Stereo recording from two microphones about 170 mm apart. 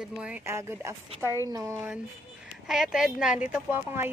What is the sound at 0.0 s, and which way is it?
Speech, 5° right (ahead or behind).